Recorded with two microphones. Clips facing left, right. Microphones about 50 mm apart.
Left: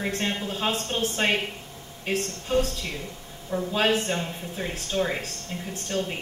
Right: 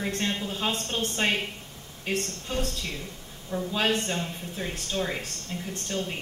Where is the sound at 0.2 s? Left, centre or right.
Centre.